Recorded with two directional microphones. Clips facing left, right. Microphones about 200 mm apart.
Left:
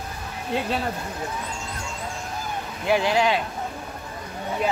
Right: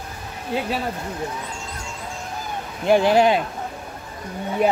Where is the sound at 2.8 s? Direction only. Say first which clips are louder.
Right 5 dB; 45° right (ahead or behind).